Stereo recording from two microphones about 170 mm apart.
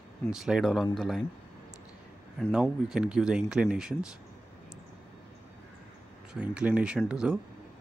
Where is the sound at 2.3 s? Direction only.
5° right (ahead or behind).